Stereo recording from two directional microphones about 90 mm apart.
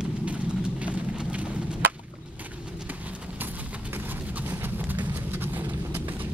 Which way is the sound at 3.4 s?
20° right (ahead or behind).